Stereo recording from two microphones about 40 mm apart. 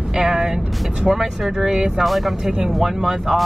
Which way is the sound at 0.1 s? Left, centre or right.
Centre.